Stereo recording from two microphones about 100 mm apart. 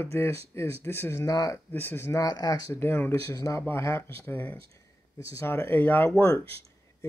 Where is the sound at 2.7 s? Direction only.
20° left (ahead or behind).